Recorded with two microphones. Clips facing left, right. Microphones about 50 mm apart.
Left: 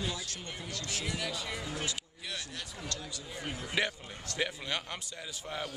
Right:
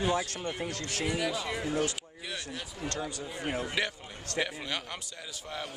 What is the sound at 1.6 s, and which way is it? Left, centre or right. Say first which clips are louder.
Speech: right 7 dB; right.